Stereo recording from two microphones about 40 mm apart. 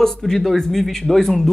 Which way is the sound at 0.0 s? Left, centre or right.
Centre.